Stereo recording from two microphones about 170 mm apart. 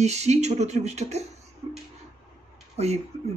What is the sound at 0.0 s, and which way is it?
A man's voice, 40° right (ahead or behind).